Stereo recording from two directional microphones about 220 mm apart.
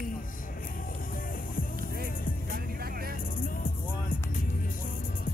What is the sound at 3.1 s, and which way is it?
Music, 40° left (ahead or behind).